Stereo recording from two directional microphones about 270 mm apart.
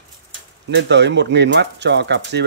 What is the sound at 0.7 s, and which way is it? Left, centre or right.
Speech, right.